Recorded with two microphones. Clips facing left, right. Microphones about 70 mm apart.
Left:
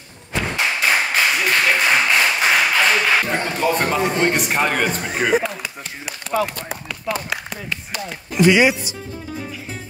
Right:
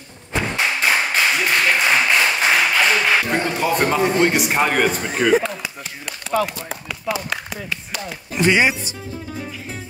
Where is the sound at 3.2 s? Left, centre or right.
Centre.